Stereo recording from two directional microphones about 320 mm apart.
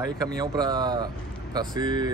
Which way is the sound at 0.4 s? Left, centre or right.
Centre.